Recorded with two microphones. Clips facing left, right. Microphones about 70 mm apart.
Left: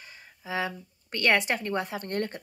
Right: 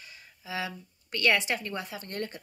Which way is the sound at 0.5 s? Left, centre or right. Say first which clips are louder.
Left 4 dB; left.